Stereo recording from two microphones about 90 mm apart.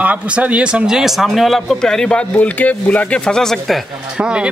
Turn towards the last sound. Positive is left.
turn(degrees=-10)  # may be behind; listen again after turning